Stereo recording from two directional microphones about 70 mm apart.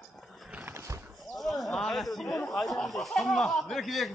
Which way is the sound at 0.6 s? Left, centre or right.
Right.